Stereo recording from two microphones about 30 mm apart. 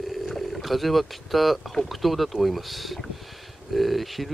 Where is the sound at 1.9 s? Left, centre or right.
Centre.